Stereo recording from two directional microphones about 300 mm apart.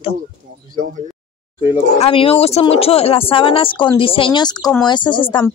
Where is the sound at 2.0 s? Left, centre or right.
Centre.